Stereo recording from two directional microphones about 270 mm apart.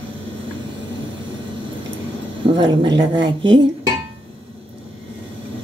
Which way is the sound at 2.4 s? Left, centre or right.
Centre.